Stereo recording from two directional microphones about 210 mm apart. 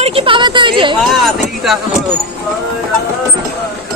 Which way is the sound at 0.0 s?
25° right (ahead or behind).